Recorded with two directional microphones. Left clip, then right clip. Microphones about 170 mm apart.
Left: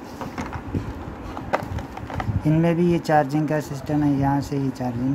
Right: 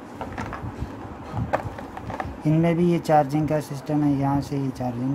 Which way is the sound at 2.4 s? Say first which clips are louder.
Left 1 dB; centre (ahead or behind).